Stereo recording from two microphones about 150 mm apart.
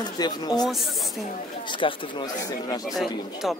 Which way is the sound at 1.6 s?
30° left (ahead or behind).